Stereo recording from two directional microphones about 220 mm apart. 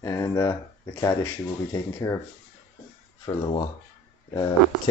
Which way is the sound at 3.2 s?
25° left (ahead or behind).